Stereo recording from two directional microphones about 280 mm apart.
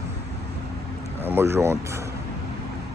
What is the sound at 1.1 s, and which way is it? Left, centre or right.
Speech, centre.